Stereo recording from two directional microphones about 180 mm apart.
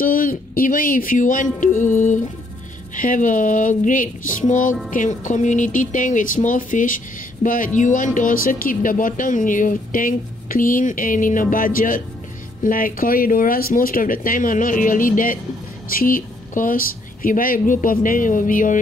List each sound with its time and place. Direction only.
0.0 s speech: 50° left (ahead or behind)